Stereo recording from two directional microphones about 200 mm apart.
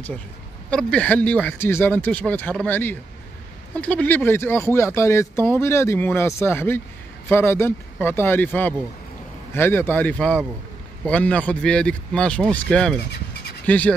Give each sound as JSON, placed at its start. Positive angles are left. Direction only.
{"t": 0.7, "sound": "speech", "side_deg": 5}